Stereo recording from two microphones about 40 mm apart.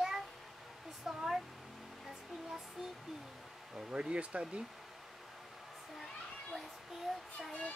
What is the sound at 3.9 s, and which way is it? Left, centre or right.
Speech, right.